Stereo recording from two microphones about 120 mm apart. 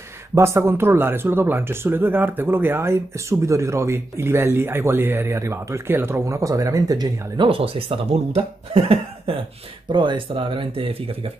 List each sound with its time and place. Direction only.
0.3 s speech: 20° right (ahead or behind)
7.4 s speech: 50° right (ahead or behind)